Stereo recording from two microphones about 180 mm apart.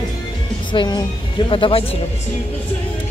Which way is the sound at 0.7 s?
25° left (ahead or behind).